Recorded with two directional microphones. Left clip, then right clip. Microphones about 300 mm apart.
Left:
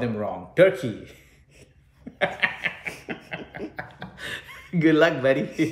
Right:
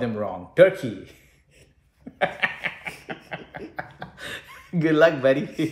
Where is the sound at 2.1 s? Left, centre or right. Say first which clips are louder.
Even; centre.